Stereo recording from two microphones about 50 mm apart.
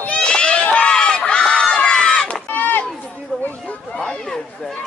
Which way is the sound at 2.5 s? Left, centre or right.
Left.